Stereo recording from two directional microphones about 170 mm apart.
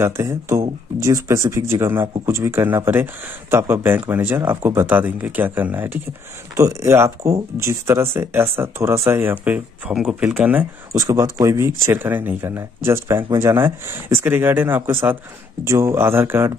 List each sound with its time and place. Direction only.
0.0 s speech: 15° right (ahead or behind)